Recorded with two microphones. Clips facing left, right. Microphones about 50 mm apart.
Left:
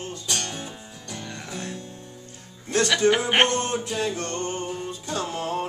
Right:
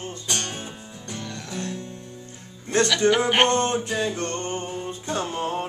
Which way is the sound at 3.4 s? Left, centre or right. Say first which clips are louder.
Right 3 dB; right.